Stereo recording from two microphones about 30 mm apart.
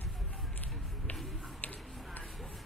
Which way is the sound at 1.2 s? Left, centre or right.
Centre.